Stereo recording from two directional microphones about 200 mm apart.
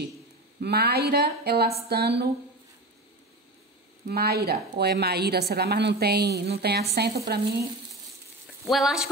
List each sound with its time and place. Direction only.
0.6 s a woman's voice: 55° right (ahead or behind)
4.1 s a woman's voice: 50° right (ahead or behind)
8.6 s speech: centre (ahead or behind)